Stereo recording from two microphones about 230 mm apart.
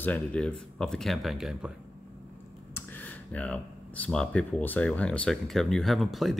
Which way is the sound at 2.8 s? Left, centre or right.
Centre.